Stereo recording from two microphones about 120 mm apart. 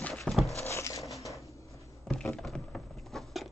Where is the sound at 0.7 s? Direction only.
25° left (ahead or behind).